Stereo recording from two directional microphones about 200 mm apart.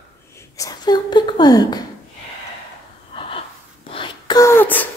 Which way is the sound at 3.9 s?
25° left (ahead or behind).